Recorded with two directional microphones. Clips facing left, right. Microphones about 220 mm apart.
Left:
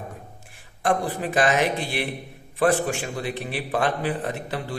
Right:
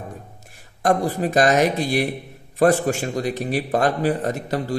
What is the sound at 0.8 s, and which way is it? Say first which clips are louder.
A man's voice: right 4 dB; 40° right (ahead or behind).